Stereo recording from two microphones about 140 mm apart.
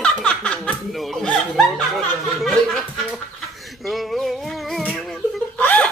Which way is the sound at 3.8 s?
Centre (ahead or behind).